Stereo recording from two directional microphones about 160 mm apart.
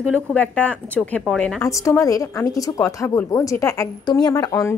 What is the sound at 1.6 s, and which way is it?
A woman's voice, 20° left (ahead or behind).